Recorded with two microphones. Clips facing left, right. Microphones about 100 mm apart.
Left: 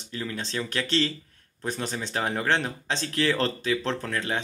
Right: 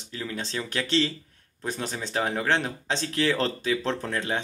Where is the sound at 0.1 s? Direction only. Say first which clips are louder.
Even; 5° right (ahead or behind).